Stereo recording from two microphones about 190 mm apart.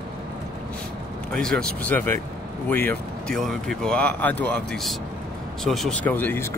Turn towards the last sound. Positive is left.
turn(degrees=10)  # may be behind; listen again after turning